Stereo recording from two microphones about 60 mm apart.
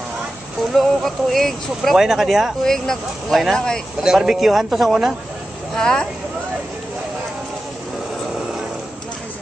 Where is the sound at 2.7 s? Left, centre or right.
Centre.